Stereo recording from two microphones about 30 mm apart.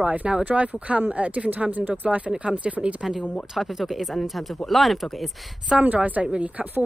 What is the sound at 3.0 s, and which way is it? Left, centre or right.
Speech, centre.